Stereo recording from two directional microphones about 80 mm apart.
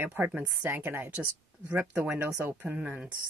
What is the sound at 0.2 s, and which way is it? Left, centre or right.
Speech, centre.